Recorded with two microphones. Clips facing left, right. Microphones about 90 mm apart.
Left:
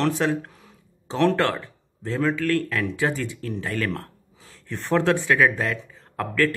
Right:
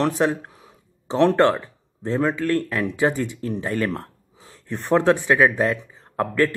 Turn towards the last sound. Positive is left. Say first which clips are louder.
# right 4 dB
turn(degrees=-20)  # may be behind; listen again after turning